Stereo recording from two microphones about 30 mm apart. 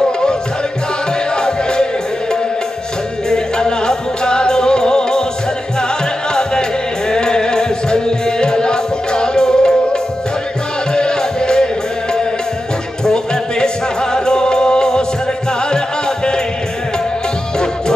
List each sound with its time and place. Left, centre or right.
1.3 s music: left
3.3 s music: left
7.1 s music: left
10.9 s music: left